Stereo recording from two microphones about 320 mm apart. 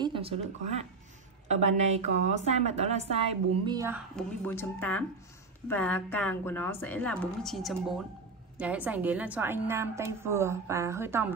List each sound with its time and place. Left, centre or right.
0.0 s a woman's voice: centre
4.2 s a woman's voice: centre